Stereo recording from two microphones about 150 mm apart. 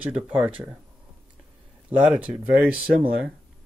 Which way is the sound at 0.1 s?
10° right (ahead or behind).